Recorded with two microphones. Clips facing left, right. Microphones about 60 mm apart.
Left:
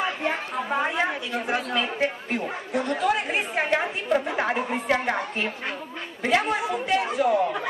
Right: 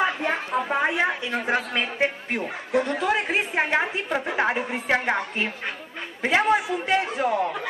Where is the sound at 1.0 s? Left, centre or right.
Right; by 4.9 s centre.